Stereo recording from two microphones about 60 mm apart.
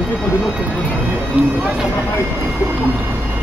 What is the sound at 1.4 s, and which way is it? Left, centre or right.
Speech, right.